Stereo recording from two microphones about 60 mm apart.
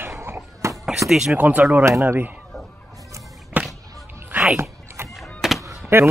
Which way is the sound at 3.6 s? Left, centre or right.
Right.